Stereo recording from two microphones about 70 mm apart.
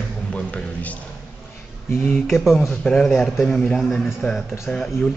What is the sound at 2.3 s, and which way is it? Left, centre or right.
A man's voice, centre.